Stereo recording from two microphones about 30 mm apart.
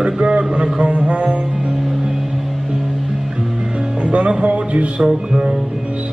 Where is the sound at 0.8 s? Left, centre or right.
Right.